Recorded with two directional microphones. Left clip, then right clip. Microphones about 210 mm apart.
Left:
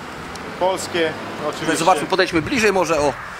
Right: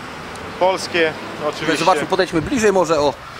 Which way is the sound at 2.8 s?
15° right (ahead or behind).